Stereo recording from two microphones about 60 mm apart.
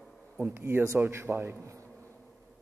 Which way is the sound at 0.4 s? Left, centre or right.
Right.